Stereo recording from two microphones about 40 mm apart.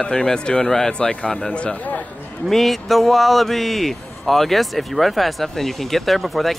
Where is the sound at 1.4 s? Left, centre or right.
Left.